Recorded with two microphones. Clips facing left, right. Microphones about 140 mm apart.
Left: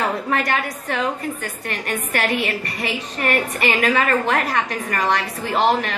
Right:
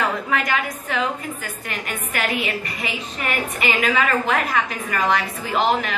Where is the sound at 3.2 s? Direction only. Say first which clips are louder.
Left 4 dB; 45° left (ahead or behind).